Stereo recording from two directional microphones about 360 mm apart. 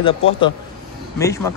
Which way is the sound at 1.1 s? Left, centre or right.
Centre.